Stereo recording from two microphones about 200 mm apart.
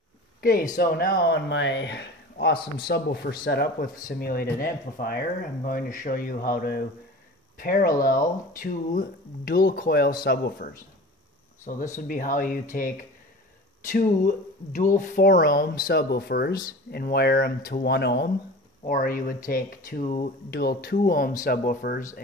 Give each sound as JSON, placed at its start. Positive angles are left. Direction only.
{"t": 0.4, "sound": "speech", "side_deg": 45}
{"t": 11.7, "sound": "speech", "side_deg": 40}
{"t": 18.9, "sound": "speech", "side_deg": 40}